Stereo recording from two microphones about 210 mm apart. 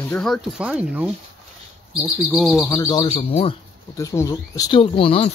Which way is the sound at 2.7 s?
20° left (ahead or behind).